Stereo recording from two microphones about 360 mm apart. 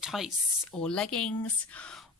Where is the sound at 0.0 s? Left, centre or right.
Centre.